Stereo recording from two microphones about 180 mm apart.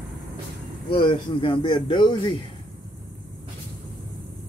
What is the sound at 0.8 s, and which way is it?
A man's voice, 25° left (ahead or behind).